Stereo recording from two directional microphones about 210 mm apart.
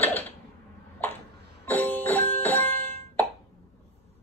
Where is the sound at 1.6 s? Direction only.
10° left (ahead or behind).